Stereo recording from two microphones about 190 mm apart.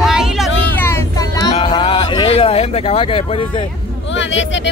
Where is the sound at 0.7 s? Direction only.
15° left (ahead or behind).